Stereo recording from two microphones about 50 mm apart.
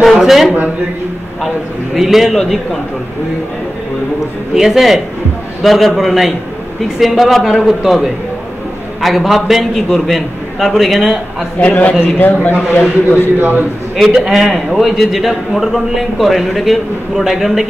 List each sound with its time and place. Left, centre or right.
0.0 s a sound: centre
2.0 s a man's voice: centre
4.6 s a man's voice: centre
11.6 s a man's voice: left
12.0 s a man's voice: left
13.4 s a man's voice: right
13.9 s a man's voice: centre